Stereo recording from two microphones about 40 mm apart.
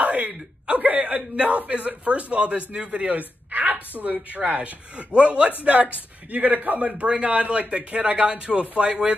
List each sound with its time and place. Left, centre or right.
0.0 s a sound: right
1.6 s speech: right
7.0 s speech: right